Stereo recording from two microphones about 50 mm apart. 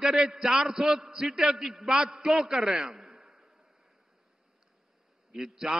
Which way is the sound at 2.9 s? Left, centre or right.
Centre.